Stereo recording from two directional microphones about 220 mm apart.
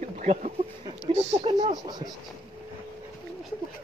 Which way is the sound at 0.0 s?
35° right (ahead or behind).